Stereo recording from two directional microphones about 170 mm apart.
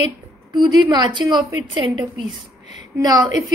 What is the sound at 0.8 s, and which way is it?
A woman's voice, 25° right (ahead or behind).